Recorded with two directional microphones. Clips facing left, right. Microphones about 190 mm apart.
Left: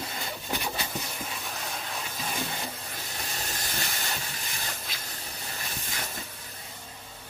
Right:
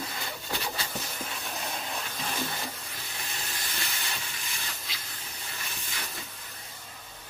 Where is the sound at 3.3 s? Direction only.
40° left (ahead or behind).